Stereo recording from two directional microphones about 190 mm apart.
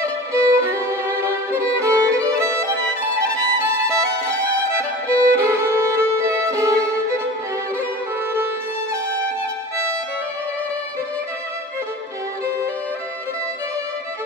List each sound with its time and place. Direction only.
0.0 s violin: 15° right (ahead or behind)
3.9 s music: 15° right (ahead or behind)
4.7 s violin: 15° right (ahead or behind)